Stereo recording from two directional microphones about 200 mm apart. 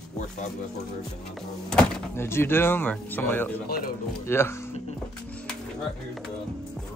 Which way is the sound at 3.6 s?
45° left (ahead or behind).